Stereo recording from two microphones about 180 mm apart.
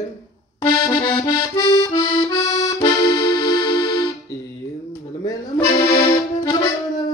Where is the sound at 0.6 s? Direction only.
25° left (ahead or behind).